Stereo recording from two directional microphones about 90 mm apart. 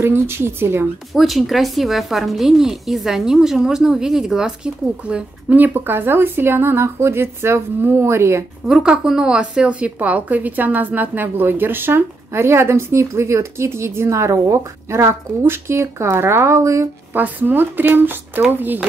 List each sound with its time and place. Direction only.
0.0 s a woman's voice: 25° right (ahead or behind)
1.1 s a woman's voice: centre (ahead or behind); by 8.5 s 30° right (ahead or behind)
8.6 s a woman's voice: 10° right (ahead or behind); by 16.9 s 35° right (ahead or behind)
17.1 s a woman's voice: 20° right (ahead or behind)